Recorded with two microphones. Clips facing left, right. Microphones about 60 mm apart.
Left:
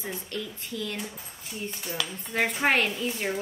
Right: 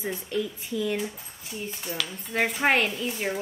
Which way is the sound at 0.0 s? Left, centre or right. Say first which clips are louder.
Right 5 dB; centre.